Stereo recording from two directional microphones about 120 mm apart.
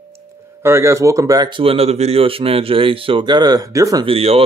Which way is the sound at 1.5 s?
50° right (ahead or behind).